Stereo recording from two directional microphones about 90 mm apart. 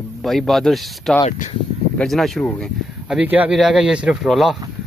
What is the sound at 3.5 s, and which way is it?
Speech, 5° right (ahead or behind).